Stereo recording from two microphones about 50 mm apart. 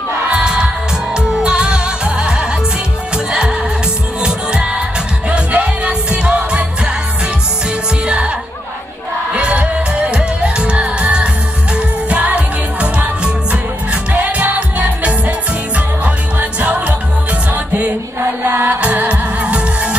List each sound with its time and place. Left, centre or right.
0.3 s music: centre
9.3 s music: right
14.1 s music: right
16.3 s music: right
18.4 s music: right
18.8 s music: right